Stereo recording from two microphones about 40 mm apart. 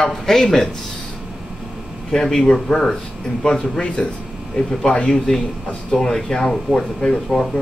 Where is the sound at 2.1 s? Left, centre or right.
Centre.